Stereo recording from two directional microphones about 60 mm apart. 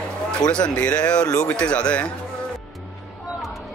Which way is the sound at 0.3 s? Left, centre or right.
Centre.